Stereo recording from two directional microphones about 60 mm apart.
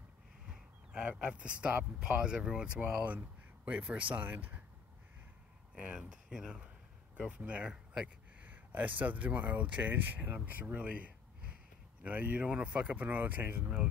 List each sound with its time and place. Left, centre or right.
0.5 s speech: centre; by 4.6 s right
5.9 s speech: centre
7.2 s speech: right
8.4 s speech: right
12.4 s speech: centre
12.9 s speech: right
13.6 s speech: right